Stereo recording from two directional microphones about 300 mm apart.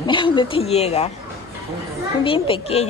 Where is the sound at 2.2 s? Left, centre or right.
Centre.